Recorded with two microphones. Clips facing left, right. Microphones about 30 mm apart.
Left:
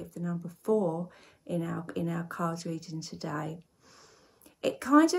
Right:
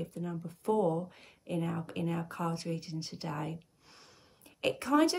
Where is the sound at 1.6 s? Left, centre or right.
Centre.